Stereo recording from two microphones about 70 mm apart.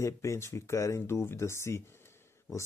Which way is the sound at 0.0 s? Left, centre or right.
Left.